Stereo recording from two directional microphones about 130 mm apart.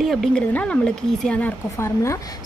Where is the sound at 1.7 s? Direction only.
25° left (ahead or behind).